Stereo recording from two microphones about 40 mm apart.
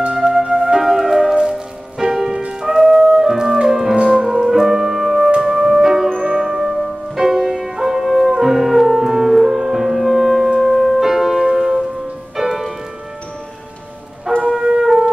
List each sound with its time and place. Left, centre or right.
0.1 s flute: centre
0.7 s music: centre
10.6 s piano: centre
11.4 s music: centre
14.3 s wind instrument: centre
14.6 s music: right